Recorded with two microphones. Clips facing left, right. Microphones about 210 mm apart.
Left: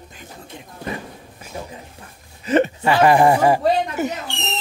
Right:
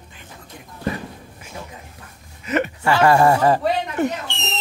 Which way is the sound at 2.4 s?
30° left (ahead or behind).